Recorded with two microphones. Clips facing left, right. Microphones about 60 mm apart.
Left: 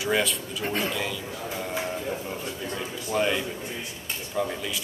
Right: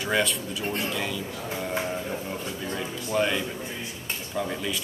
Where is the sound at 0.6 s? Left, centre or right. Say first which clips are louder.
Left 2 dB; left.